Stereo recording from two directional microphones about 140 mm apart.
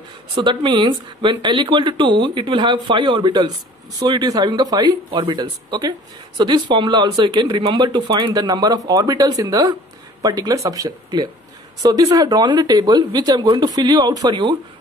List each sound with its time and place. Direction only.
0.4 s speech: 35° right (ahead or behind)